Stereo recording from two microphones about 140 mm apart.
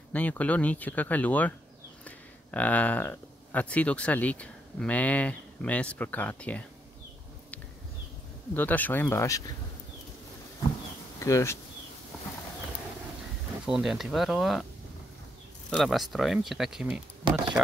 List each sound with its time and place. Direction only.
0.1 s speech: 10° left (ahead or behind)
8.5 s speech: 10° left (ahead or behind)
11.1 s speech: 20° left (ahead or behind)
13.7 s speech: centre (ahead or behind)
15.7 s speech: centre (ahead or behind)
17.2 s speech: 35° right (ahead or behind)